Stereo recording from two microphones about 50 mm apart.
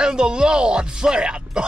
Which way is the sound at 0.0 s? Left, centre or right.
Centre.